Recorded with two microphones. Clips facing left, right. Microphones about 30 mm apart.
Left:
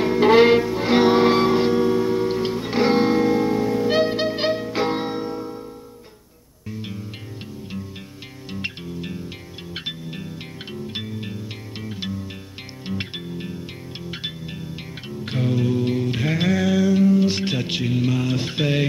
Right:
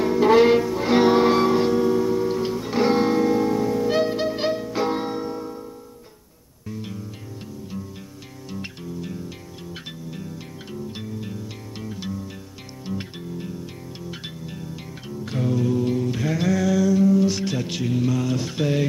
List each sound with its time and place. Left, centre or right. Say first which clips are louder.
0.0 s music: left 1 dB; left
8.5 s music: left 3 dB; left
12.8 s music: left 2 dB; left